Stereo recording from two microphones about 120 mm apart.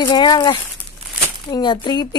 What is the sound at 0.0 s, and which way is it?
Speech, 40° left (ahead or behind).